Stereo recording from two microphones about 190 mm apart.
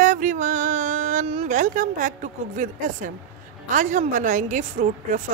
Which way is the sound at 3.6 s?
40° right (ahead or behind).